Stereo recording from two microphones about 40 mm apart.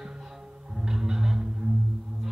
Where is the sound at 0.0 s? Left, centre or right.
Centre.